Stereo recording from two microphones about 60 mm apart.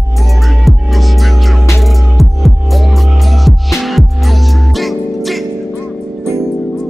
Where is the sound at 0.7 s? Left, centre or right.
Centre.